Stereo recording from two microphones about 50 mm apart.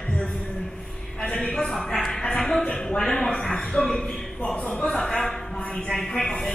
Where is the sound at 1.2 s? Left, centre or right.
Left.